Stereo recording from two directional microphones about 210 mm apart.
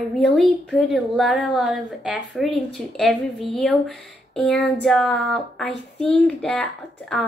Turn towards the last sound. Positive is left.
turn(degrees=0)  # may be behind; listen again after turning